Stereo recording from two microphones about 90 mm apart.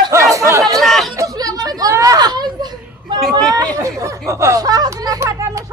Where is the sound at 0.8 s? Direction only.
Centre (ahead or behind).